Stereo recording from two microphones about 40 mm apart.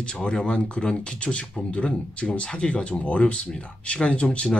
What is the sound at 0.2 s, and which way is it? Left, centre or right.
Speech, left.